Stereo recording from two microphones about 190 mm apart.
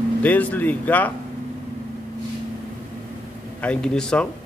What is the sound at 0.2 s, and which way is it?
Speech, 10° left (ahead or behind).